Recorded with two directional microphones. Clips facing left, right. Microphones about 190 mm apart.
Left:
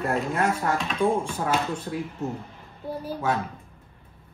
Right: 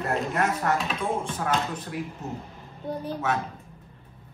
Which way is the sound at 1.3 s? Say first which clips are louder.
Left 2 dB; 30° left (ahead or behind).